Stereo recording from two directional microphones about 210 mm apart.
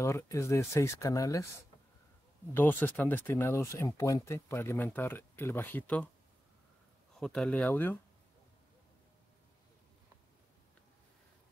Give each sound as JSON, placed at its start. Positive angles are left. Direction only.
{"t": 0.0, "sound": "speech", "side_deg": 15}
{"t": 2.5, "sound": "speech", "side_deg": 10}
{"t": 7.2, "sound": "speech", "side_deg": 5}